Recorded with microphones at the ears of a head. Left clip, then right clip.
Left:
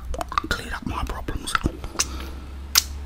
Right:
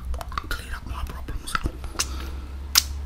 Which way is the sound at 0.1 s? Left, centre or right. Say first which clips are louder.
Left 7 dB; left.